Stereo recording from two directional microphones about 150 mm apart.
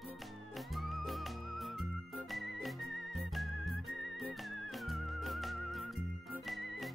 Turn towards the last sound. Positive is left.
turn(degrees=0)  # may be behind; listen again after turning